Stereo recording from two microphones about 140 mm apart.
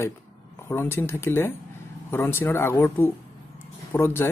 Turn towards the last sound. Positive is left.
turn(degrees=15)  # may be behind; listen again after turning